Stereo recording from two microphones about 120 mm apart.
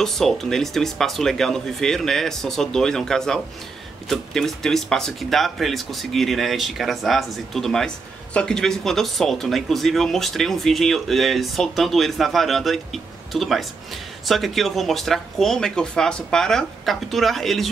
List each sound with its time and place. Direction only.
0.0 s speech: 5° left (ahead or behind)